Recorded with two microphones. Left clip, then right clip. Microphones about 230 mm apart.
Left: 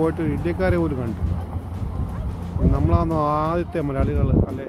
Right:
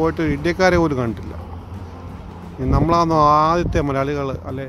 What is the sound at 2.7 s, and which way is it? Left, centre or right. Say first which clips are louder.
Speech: right 8 dB; right.